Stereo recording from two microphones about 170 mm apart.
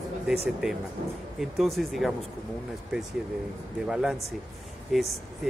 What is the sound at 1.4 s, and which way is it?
Speech, centre (ahead or behind).